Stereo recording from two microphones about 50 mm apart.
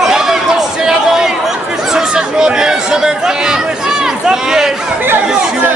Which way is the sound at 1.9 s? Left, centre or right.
Centre.